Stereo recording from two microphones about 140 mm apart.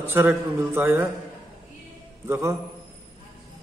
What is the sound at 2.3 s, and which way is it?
Speech, 20° right (ahead or behind).